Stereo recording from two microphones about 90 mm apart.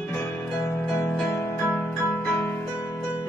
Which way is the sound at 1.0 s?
25° left (ahead or behind).